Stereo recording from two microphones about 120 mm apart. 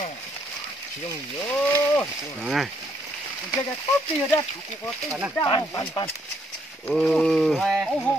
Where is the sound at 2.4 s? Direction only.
5° right (ahead or behind).